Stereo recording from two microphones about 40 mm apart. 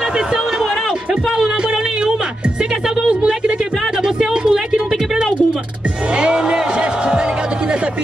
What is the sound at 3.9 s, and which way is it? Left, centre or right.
Music, centre.